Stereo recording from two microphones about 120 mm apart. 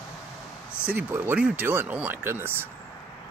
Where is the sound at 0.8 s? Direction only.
15° right (ahead or behind).